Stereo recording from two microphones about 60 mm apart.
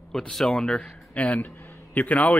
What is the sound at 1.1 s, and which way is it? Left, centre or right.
Speech, left.